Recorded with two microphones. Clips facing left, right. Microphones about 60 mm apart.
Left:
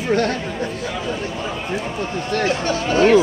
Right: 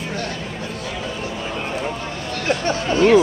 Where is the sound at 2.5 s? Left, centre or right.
Right.